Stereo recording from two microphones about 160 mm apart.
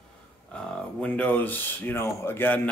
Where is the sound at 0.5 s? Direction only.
10° left (ahead or behind).